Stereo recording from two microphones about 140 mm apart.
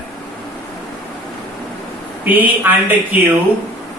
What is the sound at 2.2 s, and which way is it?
Speech, 10° right (ahead or behind).